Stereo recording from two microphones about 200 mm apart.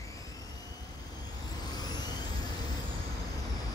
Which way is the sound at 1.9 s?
20° left (ahead or behind).